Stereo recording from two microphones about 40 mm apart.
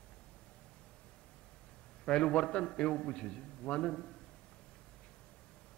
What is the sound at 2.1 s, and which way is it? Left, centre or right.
A man's voice, left.